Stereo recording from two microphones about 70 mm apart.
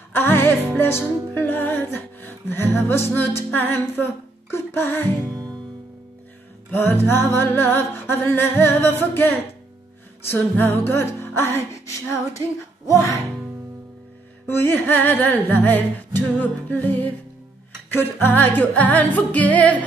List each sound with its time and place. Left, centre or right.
0.1 s music: left
5.3 s music: right
6.7 s music: left
10.5 s music: left
14.5 s music: left